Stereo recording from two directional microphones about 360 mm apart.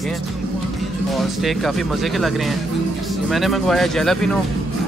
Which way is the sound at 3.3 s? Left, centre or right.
Centre.